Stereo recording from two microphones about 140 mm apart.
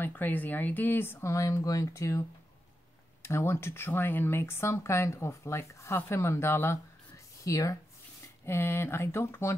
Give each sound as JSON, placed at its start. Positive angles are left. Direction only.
{"t": 0.0, "sound": "speech", "side_deg": 15}